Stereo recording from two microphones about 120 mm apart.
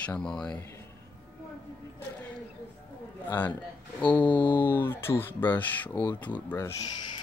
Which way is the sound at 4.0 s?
15° left (ahead or behind).